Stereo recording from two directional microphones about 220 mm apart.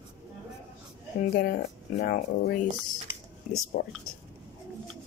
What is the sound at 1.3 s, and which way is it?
Speech, 45° left (ahead or behind).